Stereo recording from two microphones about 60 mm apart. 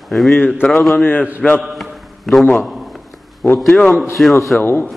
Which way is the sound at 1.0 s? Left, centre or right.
Left.